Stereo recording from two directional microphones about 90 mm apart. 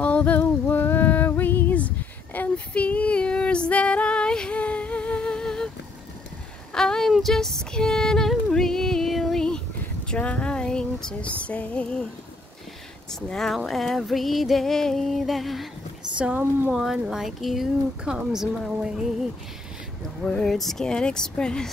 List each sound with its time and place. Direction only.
0.0 s music: 15° left (ahead or behind)
2.3 s female singing: 15° left (ahead or behind)
6.7 s female singing: 5° left (ahead or behind)
13.1 s speech: 5° left (ahead or behind)
13.7 s music: centre (ahead or behind)
16.2 s speech: 20° right (ahead or behind)
16.7 s music: 5° right (ahead or behind)
18.7 s a sound: 10° right (ahead or behind)
20.2 s speech: 5° left (ahead or behind)